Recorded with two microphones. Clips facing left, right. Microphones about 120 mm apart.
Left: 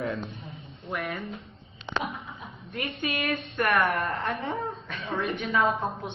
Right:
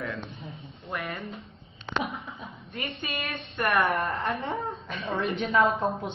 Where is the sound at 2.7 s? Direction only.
Centre (ahead or behind).